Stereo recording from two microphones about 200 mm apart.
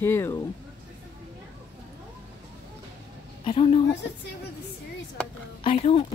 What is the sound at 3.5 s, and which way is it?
Speech, 30° left (ahead or behind).